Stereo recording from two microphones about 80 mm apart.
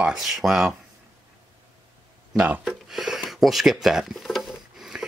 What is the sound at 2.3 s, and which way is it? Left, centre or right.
Speech, centre.